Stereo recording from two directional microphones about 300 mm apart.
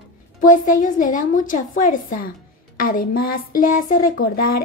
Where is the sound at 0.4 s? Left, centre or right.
Left.